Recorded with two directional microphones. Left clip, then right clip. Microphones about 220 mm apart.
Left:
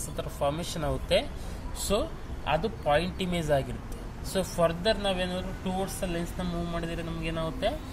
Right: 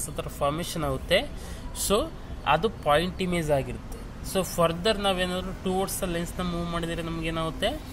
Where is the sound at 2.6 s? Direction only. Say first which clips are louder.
Right 3 dB; 35° right (ahead or behind).